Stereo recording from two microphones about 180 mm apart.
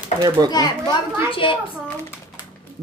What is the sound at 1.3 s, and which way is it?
Speech, 30° left (ahead or behind).